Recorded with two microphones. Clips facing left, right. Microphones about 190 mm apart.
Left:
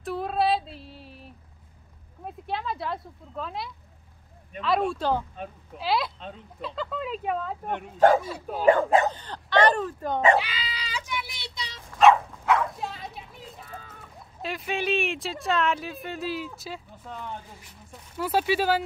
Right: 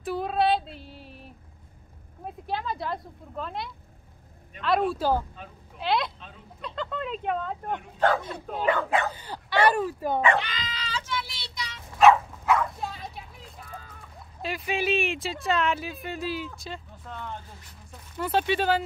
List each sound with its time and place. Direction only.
0.0 s female singing: centre (ahead or behind)
2.2 s speech: centre (ahead or behind)
8.6 s speech: 45° left (ahead or behind)
9.1 s speech: 10° right (ahead or behind)
10.4 s child singing: 10° left (ahead or behind); by 11.8 s 30° left (ahead or behind)
12.0 s bow-wow: centre (ahead or behind)
14.4 s speech: centre (ahead or behind)